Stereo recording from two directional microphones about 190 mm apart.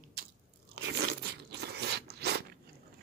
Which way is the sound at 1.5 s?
60° right (ahead or behind).